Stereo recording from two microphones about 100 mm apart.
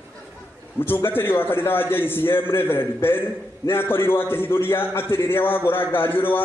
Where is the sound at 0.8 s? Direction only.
20° left (ahead or behind).